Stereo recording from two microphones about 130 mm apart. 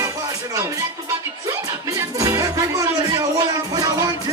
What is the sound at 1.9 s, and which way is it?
Music, 25° right (ahead or behind).